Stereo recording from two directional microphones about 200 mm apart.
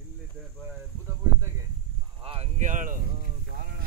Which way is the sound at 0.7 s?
10° right (ahead or behind).